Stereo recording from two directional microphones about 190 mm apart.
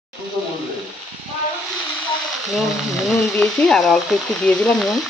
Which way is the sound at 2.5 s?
Centre (ahead or behind).